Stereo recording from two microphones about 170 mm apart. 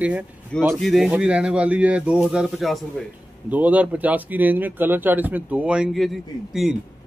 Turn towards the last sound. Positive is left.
turn(degrees=0)  # may be behind; listen again after turning